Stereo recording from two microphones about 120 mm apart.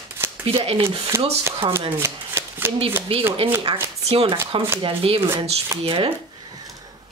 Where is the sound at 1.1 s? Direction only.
20° right (ahead or behind).